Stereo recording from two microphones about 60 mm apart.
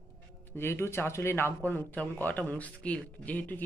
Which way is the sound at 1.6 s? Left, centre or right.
Left.